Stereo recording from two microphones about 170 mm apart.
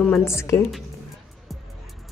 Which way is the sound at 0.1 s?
15° left (ahead or behind).